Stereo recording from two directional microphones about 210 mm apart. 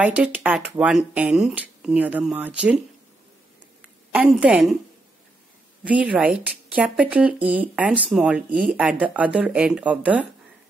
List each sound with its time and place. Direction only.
0.0 s speech: 5° right (ahead or behind)
3.8 s a woman's voice: 5° right (ahead or behind)
5.9 s speech: 5° right (ahead or behind)
8.5 s speech: 40° right (ahead or behind)
9.0 s speech: 5° right (ahead or behind)